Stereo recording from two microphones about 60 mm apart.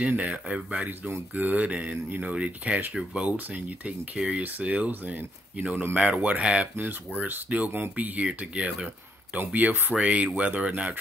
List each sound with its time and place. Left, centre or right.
0.2 s speech: right
1.3 s speech: right
2.9 s speech: centre
3.3 s speech: right
7.7 s speech: right
9.9 s speech: centre